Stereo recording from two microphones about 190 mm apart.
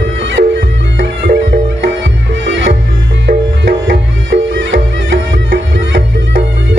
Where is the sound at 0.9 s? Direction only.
60° right (ahead or behind).